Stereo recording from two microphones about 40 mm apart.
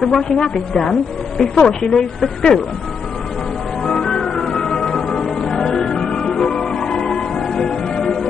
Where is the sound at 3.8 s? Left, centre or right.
Centre.